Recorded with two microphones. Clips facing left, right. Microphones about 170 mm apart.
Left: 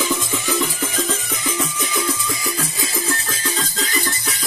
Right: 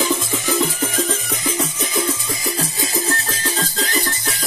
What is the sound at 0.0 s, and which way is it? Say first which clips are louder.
Music: right 2 dB; 45° right (ahead or behind).